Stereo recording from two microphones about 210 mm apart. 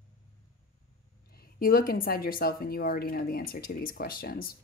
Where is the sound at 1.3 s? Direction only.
45° left (ahead or behind).